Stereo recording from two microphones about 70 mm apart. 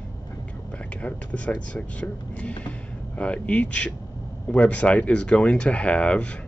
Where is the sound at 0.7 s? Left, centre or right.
Centre.